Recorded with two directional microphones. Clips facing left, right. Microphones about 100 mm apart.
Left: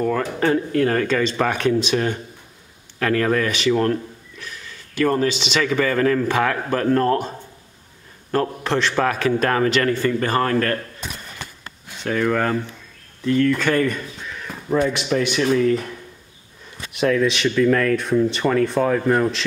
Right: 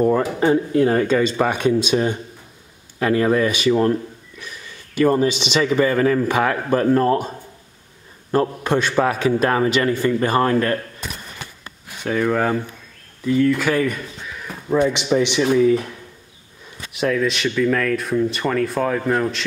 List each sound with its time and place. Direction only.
0.0 s a man's voice: 20° right (ahead or behind)
12.0 s speech: 10° right (ahead or behind)
14.9 s speech: 15° right (ahead or behind)
16.9 s speech: centre (ahead or behind)